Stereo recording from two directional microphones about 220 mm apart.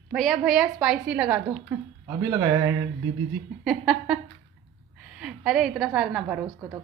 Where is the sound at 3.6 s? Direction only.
Centre (ahead or behind).